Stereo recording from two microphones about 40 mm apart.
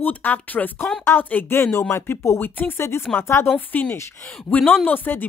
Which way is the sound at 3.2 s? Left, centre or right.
Left.